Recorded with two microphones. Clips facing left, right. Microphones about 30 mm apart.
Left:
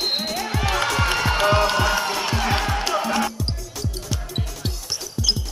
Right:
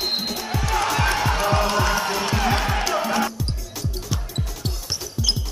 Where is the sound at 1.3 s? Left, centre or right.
Left.